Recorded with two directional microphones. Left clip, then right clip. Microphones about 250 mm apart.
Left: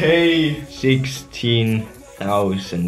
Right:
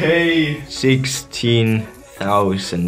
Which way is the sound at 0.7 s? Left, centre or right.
Centre.